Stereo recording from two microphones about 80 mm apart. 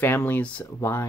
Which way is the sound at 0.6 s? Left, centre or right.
Left.